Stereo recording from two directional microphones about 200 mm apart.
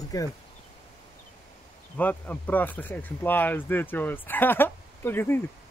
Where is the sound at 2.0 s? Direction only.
10° left (ahead or behind).